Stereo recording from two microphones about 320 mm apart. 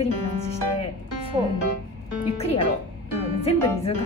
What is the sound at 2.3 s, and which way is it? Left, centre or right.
Speech, centre.